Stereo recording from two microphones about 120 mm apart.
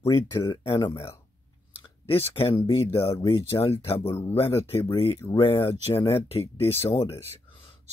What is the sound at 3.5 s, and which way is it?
Speech, 30° left (ahead or behind).